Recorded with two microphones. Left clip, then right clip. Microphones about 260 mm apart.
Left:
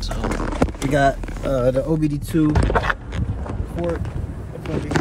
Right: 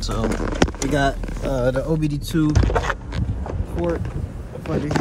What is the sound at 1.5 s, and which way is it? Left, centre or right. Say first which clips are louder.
Speech: left 2 dB; centre.